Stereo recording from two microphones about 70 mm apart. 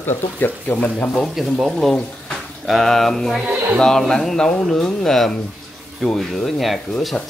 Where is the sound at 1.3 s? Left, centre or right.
Centre.